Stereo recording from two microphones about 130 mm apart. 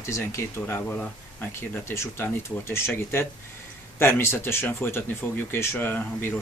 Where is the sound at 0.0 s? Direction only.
20° left (ahead or behind).